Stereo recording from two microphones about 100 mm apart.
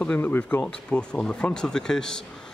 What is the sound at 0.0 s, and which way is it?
Speech, 15° left (ahead or behind).